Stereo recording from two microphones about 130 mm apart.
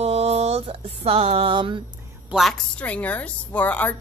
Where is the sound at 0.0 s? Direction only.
55° right (ahead or behind).